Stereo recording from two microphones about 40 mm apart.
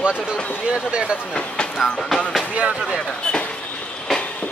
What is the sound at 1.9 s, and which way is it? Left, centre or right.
Speech, centre.